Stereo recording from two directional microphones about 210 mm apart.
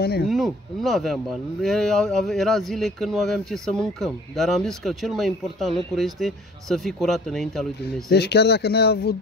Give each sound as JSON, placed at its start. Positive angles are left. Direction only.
{"t": 0.3, "sound": "speech", "side_deg": 0}
{"t": 8.1, "sound": "speech", "side_deg": 50}